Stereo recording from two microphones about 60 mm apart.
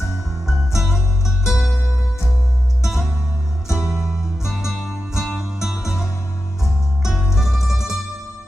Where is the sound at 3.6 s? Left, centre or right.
Left.